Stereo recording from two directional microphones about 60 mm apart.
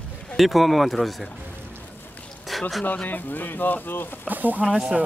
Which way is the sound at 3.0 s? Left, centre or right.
Left.